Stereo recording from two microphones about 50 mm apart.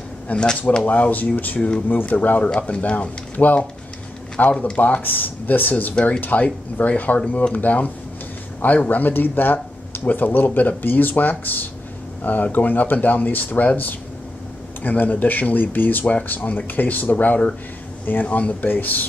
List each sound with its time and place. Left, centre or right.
0.3 s speech: centre
5.0 s speech: left
5.9 s speech: left
6.2 s speech: left